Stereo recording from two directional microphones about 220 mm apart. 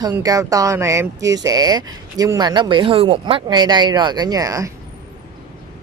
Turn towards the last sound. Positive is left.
turn(degrees=-15)  # may be behind; listen again after turning